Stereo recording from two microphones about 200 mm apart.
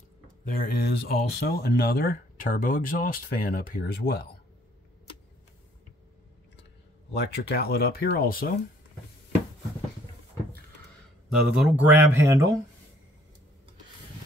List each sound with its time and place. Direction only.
0.6 s speech: 50° left (ahead or behind)
7.2 s speech: 55° left (ahead or behind)
11.3 s speech: 5° right (ahead or behind)